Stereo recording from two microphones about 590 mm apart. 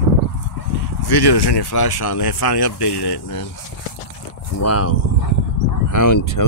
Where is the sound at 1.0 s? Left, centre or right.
Left.